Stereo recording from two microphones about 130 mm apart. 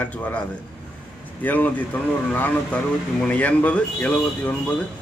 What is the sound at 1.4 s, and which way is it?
A man's voice, 15° left (ahead or behind).